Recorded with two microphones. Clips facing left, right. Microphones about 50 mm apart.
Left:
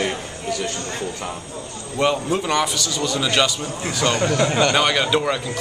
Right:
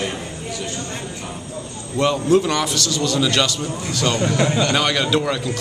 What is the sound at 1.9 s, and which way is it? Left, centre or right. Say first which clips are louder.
A man's voice: right 4 dB; centre.